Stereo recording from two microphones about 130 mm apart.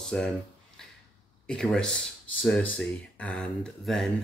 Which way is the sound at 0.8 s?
5° left (ahead or behind).